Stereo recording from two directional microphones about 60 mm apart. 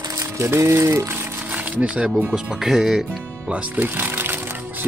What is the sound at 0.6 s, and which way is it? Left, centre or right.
Speech, right.